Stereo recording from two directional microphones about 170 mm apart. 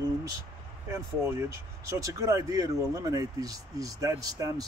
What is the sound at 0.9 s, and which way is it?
Speech, 15° right (ahead or behind).